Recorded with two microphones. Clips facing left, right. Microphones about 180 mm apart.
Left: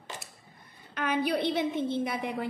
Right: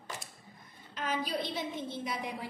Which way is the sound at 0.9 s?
65° left (ahead or behind).